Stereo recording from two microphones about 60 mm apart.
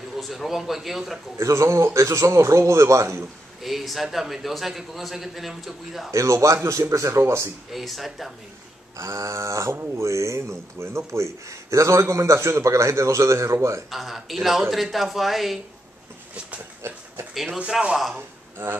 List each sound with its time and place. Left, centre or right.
0.2 s a man's voice: centre
1.4 s speech: right
3.6 s a man's voice: centre
6.1 s speech: right
7.7 s a man's voice: centre
8.9 s speech: right
13.8 s a man's voice: centre
16.8 s speech: right
17.3 s speech: centre
18.1 s a man's voice: right